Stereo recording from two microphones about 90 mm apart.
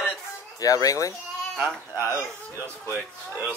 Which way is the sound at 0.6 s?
40° left (ahead or behind).